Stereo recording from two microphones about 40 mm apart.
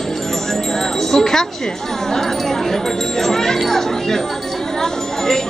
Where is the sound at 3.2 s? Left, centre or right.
Centre.